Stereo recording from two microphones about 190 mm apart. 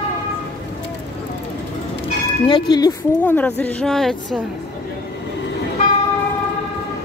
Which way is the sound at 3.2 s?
10° left (ahead or behind).